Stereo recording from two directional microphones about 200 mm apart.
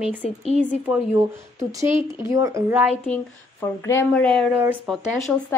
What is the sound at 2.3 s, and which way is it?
Speech, 15° right (ahead or behind).